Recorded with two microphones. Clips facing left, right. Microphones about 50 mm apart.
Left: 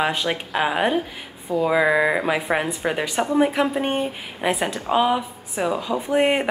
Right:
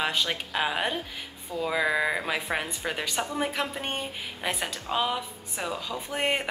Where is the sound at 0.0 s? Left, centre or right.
Centre.